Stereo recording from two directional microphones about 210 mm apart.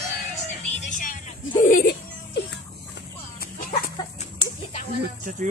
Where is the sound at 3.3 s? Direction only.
40° left (ahead or behind).